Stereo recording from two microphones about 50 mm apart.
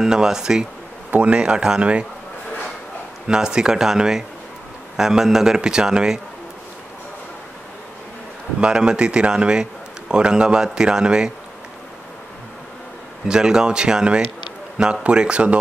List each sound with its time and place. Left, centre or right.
0.0 s speech: centre
1.1 s speech: right
3.3 s speech: centre
8.5 s speech: centre
13.3 s speech: centre